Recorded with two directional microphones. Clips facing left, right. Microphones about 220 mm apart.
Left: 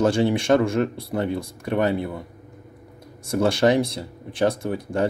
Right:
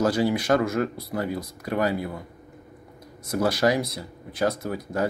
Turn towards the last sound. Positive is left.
turn(degrees=30)  # may be behind; listen again after turning